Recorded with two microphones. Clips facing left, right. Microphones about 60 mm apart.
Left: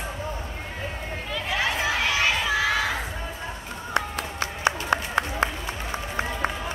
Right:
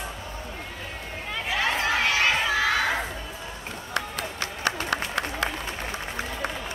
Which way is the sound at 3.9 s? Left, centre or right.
Left.